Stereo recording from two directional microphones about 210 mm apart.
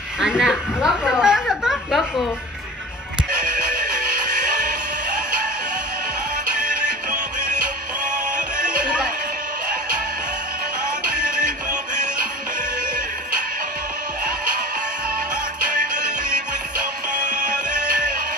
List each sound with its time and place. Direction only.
0.2 s a sound: centre (ahead or behind)
8.0 s music: 5° right (ahead or behind)
11.1 s music: 5° right (ahead or behind)
17.5 s music: 5° right (ahead or behind)